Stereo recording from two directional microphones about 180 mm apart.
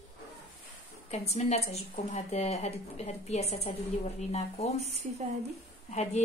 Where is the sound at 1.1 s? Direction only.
35° left (ahead or behind).